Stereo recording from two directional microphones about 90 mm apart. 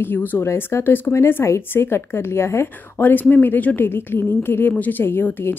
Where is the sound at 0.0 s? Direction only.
20° left (ahead or behind).